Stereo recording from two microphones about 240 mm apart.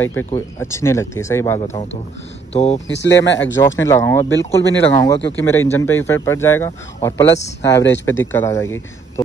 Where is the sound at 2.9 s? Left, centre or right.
Left.